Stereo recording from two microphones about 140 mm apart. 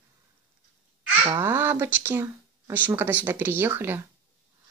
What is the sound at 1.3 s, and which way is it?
Speech, 15° right (ahead or behind).